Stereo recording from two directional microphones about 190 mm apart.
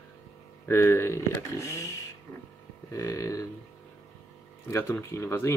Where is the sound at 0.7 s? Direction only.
15° left (ahead or behind).